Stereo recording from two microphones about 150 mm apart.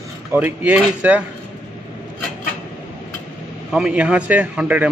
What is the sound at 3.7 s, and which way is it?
A man's voice, 5° right (ahead or behind).